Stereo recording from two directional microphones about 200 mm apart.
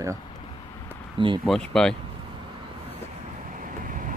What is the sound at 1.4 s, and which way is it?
Speech, centre (ahead or behind).